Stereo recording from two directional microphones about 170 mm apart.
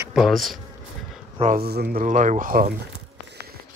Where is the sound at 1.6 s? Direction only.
65° right (ahead or behind).